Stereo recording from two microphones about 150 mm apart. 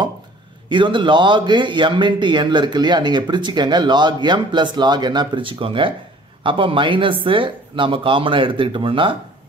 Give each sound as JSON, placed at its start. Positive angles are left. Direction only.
{"t": 0.7, "sound": "a man's voice", "side_deg": -30}